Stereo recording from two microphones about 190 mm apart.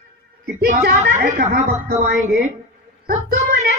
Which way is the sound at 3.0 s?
50° right (ahead or behind).